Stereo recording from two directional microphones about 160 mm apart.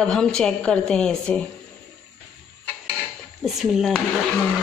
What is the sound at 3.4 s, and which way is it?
Speech, centre (ahead or behind).